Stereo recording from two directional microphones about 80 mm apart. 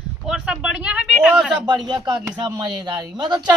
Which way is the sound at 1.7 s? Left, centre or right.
Right.